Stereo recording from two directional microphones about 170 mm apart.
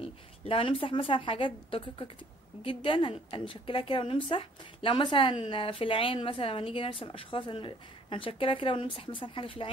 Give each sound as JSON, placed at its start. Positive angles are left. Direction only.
{"t": 0.0, "sound": "a woman's voice", "side_deg": 35}